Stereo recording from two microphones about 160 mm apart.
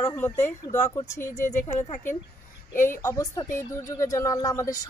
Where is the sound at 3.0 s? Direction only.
20° left (ahead or behind).